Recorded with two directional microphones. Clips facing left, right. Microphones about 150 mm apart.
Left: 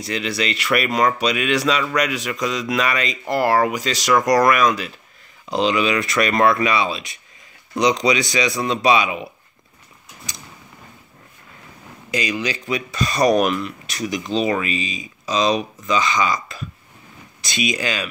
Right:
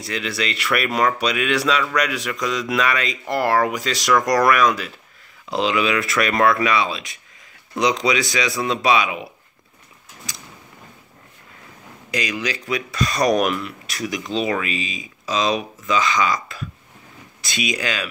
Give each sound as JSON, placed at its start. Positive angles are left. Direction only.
{"t": 0.0, "sound": "speech", "side_deg": 0}
{"t": 10.3, "sound": "vehicle", "side_deg": 0}
{"t": 12.1, "sound": "speech", "side_deg": 0}